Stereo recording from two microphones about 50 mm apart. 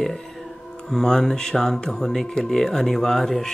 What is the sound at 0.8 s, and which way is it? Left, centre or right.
Speech, centre.